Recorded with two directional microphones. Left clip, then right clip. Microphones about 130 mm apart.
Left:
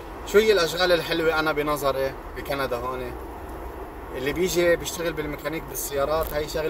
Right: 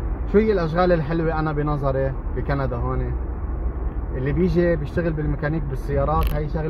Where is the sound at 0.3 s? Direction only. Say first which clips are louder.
Left 1 dB; 30° left (ahead or behind).